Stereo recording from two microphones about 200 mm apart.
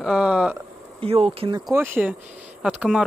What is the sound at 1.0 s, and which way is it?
Speech, 30° right (ahead or behind).